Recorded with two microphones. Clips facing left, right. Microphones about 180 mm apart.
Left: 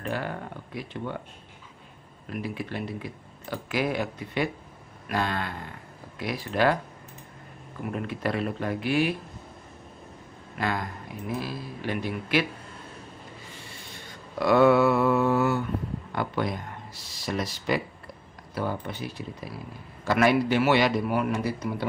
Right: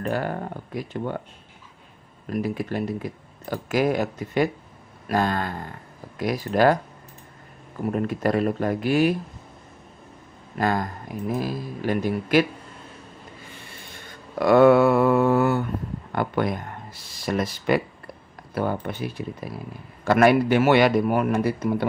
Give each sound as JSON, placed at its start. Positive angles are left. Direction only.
{"t": 0.0, "sound": "speech", "side_deg": -45}
{"t": 2.2, "sound": "speech", "side_deg": -45}
{"t": 7.8, "sound": "speech", "side_deg": -45}
{"t": 10.6, "sound": "speech", "side_deg": -45}
{"t": 13.7, "sound": "mantra", "side_deg": -55}
{"t": 16.1, "sound": "speech", "side_deg": -55}